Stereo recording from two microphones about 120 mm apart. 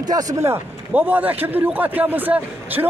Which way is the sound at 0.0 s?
30° right (ahead or behind).